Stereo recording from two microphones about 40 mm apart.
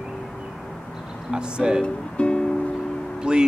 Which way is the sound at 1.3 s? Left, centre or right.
Centre.